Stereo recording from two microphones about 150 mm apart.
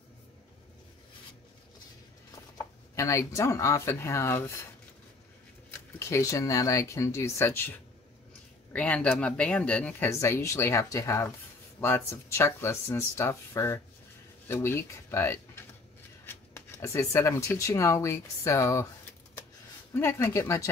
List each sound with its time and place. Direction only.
2.5 s speech: 20° left (ahead or behind)
5.7 s speech: 20° left (ahead or behind)
8.7 s speech: 10° left (ahead or behind)
10.0 s speech: 20° left (ahead or behind)
19.9 s speech: 15° left (ahead or behind)